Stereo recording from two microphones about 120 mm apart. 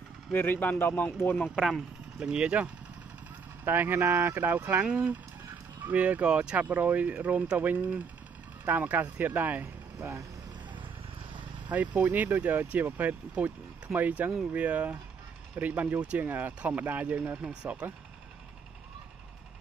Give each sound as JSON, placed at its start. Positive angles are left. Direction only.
{"t": 0.3, "sound": "speech", "side_deg": 15}
{"t": 1.5, "sound": "speech", "side_deg": 0}
{"t": 11.7, "sound": "speech", "side_deg": -15}